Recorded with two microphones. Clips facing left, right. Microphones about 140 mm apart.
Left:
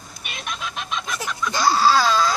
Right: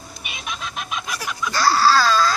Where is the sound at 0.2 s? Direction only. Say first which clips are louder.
Left 1 dB; 5° right (ahead or behind).